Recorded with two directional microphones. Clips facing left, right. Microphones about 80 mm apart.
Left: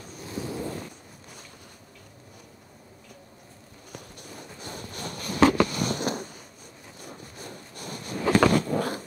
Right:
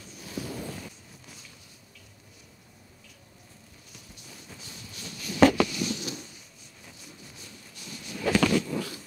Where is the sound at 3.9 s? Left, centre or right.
Left.